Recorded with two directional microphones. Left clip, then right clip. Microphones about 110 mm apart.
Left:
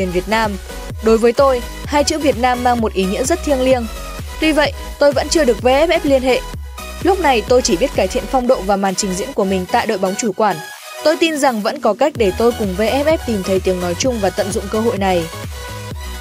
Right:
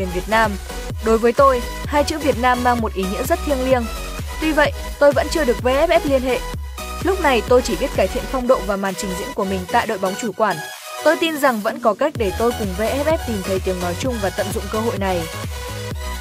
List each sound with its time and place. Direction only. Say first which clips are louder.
0.0 s speech: left 1 dB; 35° left (ahead or behind)